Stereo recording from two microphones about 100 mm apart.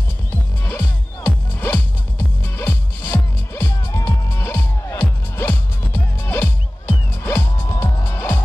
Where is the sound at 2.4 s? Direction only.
25° left (ahead or behind).